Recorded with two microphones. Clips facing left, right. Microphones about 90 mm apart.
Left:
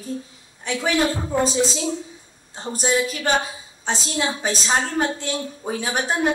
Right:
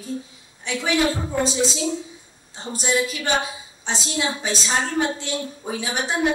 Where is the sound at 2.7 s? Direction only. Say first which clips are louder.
Left 1 dB; 40° left (ahead or behind).